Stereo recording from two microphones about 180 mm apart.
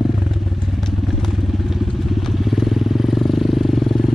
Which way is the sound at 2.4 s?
Centre (ahead or behind).